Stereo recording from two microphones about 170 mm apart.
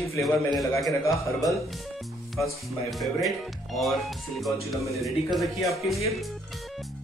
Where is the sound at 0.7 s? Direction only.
20° left (ahead or behind).